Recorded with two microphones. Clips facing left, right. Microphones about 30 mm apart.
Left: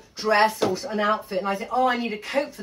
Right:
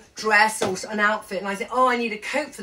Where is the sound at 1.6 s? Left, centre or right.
Right.